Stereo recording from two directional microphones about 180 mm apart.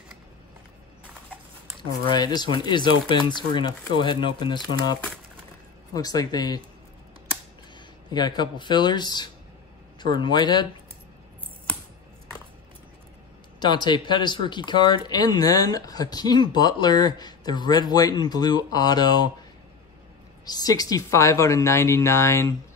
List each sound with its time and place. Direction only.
1.0 s a sound: 10° right (ahead or behind)
1.8 s speech: 25° left (ahead or behind)
5.9 s speech: 20° left (ahead or behind)
8.1 s speech: 25° left (ahead or behind)
13.6 s speech: 25° left (ahead or behind)
20.4 s speech: 20° left (ahead or behind)